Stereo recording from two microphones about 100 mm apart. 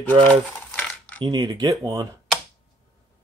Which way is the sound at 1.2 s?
45° right (ahead or behind).